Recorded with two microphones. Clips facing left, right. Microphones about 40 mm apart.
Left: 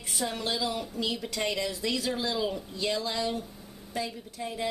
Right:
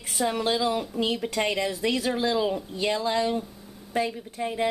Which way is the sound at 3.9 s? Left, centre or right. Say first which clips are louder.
Right 7 dB; right.